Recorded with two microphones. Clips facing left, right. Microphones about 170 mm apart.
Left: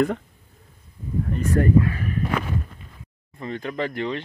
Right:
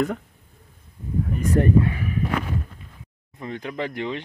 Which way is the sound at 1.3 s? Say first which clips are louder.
Even; 15° right (ahead or behind).